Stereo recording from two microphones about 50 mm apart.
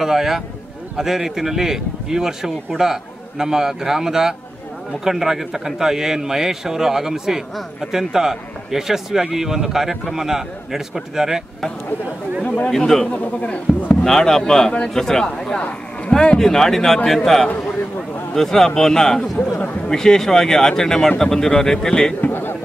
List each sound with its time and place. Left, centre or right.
0.0 s a man's voice: centre
12.6 s a man's voice: centre
13.1 s speech: left
14.0 s a man's voice: centre
22.2 s a sound: left